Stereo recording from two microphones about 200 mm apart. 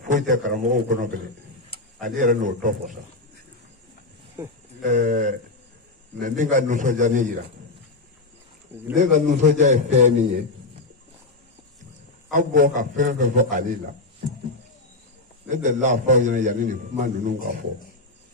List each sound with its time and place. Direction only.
0.0 s a man's voice: 40° right (ahead or behind)
4.8 s a man's voice: 40° right (ahead or behind)
8.9 s a man's voice: 40° right (ahead or behind)
12.3 s a man's voice: 40° right (ahead or behind)
15.5 s a man's voice: 40° right (ahead or behind)